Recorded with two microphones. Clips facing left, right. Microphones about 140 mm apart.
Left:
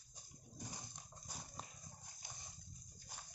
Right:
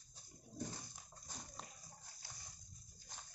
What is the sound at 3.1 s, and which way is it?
Horse, 10° left (ahead or behind).